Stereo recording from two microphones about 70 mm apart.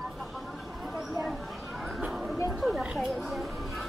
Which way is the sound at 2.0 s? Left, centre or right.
Centre.